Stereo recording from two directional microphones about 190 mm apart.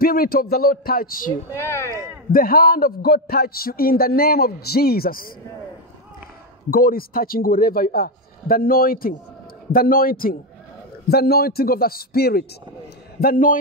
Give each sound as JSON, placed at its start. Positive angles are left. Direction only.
{"t": 0.0, "sound": "a man's voice", "side_deg": 50}
{"t": 1.5, "sound": "speech", "side_deg": 15}
{"t": 2.3, "sound": "a man's voice", "side_deg": 50}
{"t": 6.7, "sound": "a man's voice", "side_deg": 50}